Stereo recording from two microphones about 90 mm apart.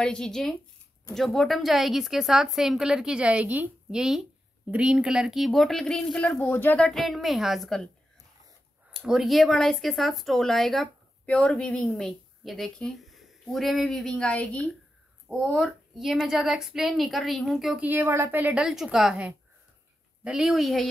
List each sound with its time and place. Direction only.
0.0 s a woman's voice: 10° left (ahead or behind); by 3.7 s 20° right (ahead or behind)
3.9 s a woman's voice: 5° right (ahead or behind); by 6.9 s 20° left (ahead or behind)
6.9 s a woman's voice: centre (ahead or behind)
8.9 s a woman's voice: 5° right (ahead or behind); by 14.6 s 15° left (ahead or behind)
15.5 s a woman's voice: centre (ahead or behind)
17.7 s speech: 20° right (ahead or behind)
18.5 s a woman's voice: 5° right (ahead or behind)
20.2 s a woman's voice: 5° right (ahead or behind)